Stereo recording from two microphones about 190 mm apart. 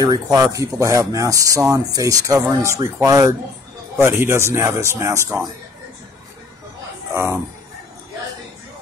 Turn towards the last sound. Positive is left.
turn(degrees=-15)  # may be behind; listen again after turning